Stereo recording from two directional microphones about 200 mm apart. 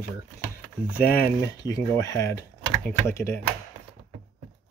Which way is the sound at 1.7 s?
15° left (ahead or behind).